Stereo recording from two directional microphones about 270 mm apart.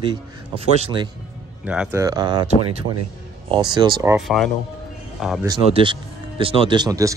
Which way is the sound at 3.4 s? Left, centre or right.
Centre.